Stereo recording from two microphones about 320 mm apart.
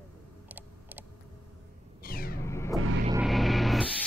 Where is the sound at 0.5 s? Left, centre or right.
Centre.